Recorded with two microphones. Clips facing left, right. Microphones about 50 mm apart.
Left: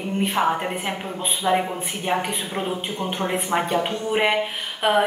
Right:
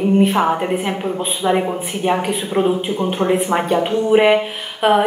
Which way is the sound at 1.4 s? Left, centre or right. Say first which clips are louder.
Right 4 dB; centre.